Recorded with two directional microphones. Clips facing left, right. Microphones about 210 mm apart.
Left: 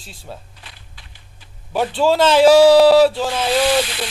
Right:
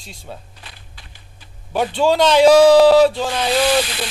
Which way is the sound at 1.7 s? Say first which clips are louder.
Even; 5° left (ahead or behind).